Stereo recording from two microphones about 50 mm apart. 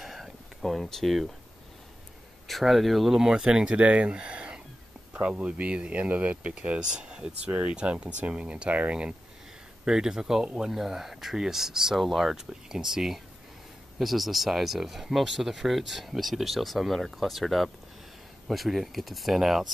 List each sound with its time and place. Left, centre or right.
0.0 s a sound: centre
2.4 s speech: centre; by 8.7 s right
9.8 s speech: centre